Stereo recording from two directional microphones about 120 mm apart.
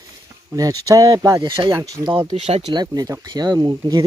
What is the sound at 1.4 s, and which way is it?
Speech, 45° right (ahead or behind).